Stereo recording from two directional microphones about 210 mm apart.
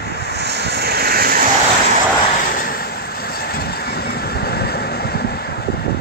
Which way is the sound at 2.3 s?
40° left (ahead or behind).